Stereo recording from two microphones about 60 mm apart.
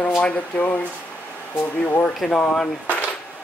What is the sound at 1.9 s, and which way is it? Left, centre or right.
Speech, left.